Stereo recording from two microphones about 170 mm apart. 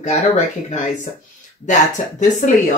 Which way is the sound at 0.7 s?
45° left (ahead or behind).